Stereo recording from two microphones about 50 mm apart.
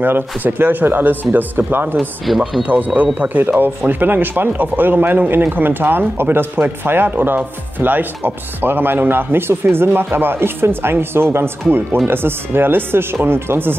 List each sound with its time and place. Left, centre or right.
0.0 s speech: right
2.3 s speech: centre
2.6 s speech: right
7.1 s speech: right